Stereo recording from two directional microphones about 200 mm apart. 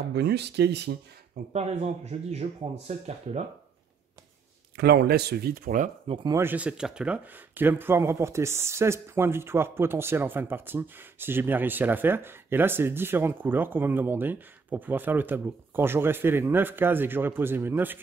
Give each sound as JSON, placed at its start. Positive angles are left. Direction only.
{"t": 0.1, "sound": "speech", "side_deg": -55}
{"t": 1.5, "sound": "speech", "side_deg": -35}
{"t": 4.7, "sound": "speech", "side_deg": -55}
{"t": 6.0, "sound": "speech", "side_deg": -20}